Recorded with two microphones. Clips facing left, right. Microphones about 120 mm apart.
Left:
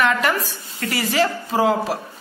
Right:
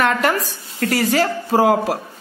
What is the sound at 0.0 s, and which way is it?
A woman's voice, 45° right (ahead or behind).